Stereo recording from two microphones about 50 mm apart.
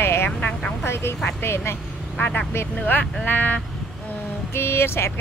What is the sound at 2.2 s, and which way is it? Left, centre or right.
Speech, left.